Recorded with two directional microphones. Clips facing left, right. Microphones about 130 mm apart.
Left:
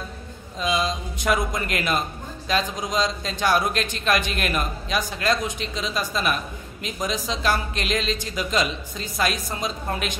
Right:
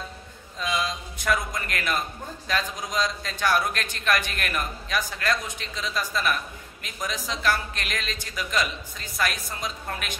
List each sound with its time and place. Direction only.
0.6 s a man's voice: 20° left (ahead or behind)